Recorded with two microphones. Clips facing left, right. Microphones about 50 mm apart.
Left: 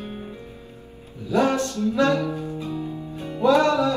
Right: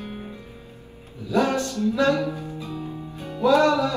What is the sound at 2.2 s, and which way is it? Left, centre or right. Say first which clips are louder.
Music: left 2 dB; left.